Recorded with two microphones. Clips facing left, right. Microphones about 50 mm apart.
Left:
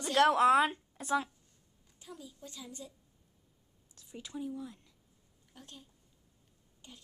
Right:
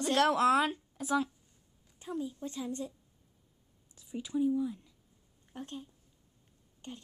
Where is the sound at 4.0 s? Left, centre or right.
Centre.